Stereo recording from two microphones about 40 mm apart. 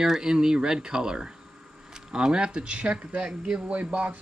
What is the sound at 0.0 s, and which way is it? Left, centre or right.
Speech, centre.